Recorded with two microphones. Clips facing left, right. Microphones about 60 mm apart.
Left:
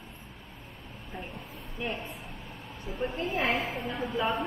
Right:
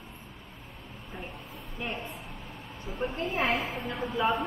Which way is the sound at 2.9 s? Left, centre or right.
Centre.